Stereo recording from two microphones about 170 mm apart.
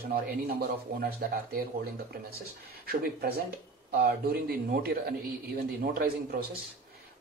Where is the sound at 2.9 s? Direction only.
65° right (ahead or behind).